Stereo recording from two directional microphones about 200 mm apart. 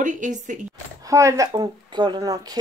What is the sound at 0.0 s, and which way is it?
Speech, 40° right (ahead or behind).